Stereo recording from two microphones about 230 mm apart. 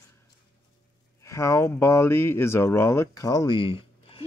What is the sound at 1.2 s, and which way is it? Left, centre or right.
Speech, centre.